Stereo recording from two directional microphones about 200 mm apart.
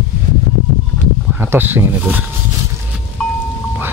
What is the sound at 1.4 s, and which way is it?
Speech, 10° right (ahead or behind).